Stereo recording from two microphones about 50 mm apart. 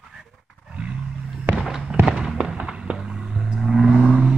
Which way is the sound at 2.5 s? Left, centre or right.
Centre.